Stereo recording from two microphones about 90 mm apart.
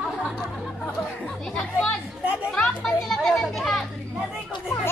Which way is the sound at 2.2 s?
15° right (ahead or behind).